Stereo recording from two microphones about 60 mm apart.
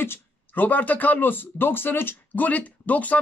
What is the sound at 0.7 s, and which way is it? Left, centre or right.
Speech, left.